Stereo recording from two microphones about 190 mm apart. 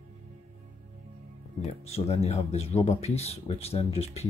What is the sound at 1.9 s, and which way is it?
Speech, 35° left (ahead or behind).